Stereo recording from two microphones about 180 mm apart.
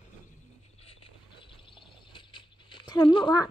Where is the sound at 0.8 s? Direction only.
30° left (ahead or behind).